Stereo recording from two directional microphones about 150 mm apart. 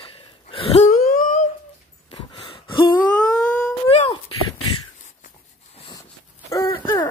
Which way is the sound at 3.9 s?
40° left (ahead or behind).